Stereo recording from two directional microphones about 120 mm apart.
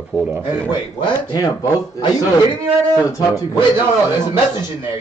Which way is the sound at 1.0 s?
40° left (ahead or behind).